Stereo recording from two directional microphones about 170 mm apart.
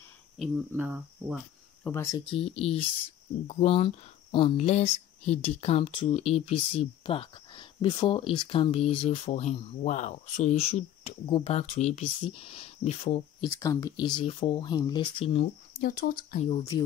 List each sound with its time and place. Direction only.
0.7 s speech: 10° right (ahead or behind)
1.9 s speech: 15° left (ahead or behind)
2.1 s speech: 35° left (ahead or behind)
13.4 s speech: 20° left (ahead or behind)
15.8 s speech: 55° left (ahead or behind)
16.4 s speech: 30° left (ahead or behind)